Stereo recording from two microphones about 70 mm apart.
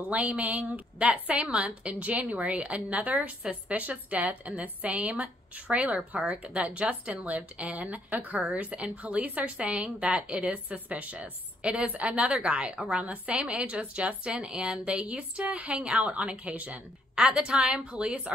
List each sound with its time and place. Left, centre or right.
0.1 s a woman's voice: centre